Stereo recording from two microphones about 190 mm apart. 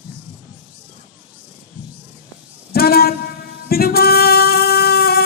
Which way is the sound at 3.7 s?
55° left (ahead or behind).